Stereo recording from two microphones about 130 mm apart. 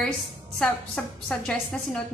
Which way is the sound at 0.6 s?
5° left (ahead or behind).